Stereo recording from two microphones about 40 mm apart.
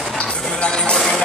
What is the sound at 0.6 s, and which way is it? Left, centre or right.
Music, left.